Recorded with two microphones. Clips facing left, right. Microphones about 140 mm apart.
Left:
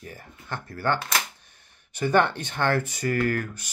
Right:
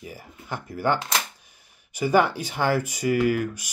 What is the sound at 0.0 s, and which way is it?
Speech, 10° right (ahead or behind).